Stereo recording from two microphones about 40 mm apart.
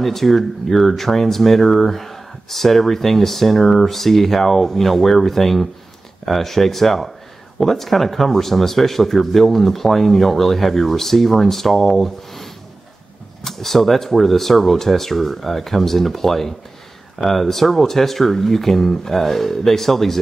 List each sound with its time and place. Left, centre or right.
0.0 s speech: centre